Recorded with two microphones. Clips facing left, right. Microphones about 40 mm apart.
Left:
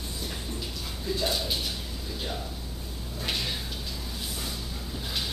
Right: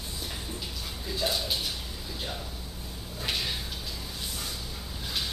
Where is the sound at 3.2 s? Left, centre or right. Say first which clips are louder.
Even; centre.